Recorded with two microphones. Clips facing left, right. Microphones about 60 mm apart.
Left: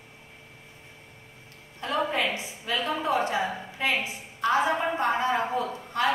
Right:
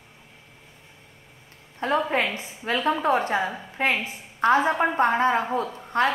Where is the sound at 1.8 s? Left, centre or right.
Right.